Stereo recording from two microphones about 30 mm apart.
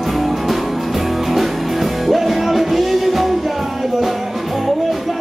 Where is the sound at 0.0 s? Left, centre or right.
Centre.